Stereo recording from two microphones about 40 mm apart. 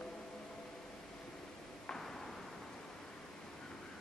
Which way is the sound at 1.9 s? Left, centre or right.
Centre.